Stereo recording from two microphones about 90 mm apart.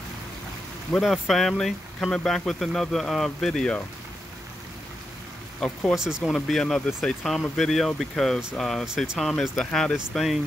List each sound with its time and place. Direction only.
0.9 s speech: centre (ahead or behind)
5.6 s speech: 10° left (ahead or behind)
5.9 s speech: 5° right (ahead or behind)
8.8 s speech: 10° right (ahead or behind)
9.6 s speech: 10° left (ahead or behind)